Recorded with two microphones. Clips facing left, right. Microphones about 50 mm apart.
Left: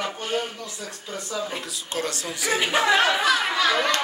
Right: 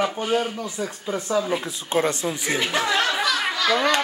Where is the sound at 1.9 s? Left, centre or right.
Right.